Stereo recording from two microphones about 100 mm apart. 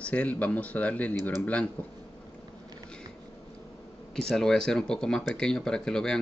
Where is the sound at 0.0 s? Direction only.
15° left (ahead or behind).